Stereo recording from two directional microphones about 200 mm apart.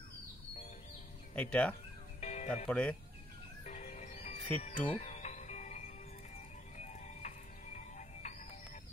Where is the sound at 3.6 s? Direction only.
35° left (ahead or behind).